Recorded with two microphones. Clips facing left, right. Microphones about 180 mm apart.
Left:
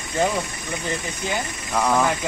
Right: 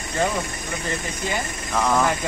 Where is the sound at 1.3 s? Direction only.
10° left (ahead or behind).